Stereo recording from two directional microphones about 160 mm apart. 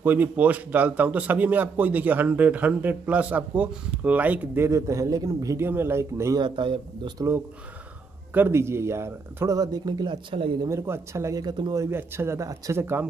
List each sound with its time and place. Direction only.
0.0 s a man's voice: 10° right (ahead or behind)
6.4 s speech: 30° right (ahead or behind)
8.3 s a man's voice: 15° right (ahead or behind); by 10.7 s 30° right (ahead or behind)
10.7 s speech: 20° right (ahead or behind)